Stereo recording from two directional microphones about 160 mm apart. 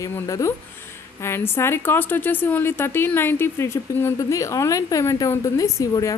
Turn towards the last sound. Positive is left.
turn(degrees=20)  # may be behind; listen again after turning